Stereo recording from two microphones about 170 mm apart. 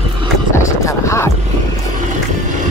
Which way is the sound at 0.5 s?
15° left (ahead or behind).